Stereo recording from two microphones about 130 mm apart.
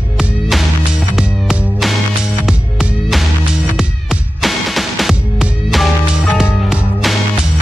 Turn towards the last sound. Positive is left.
turn(degrees=-5)  # may be behind; listen again after turning